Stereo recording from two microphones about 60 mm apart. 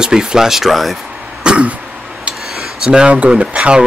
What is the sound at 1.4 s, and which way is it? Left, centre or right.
Throat clearing, centre.